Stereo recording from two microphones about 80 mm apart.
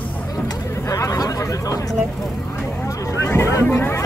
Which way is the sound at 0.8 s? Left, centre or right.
Left.